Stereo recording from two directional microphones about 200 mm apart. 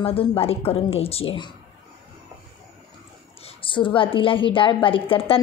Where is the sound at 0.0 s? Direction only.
30° left (ahead or behind).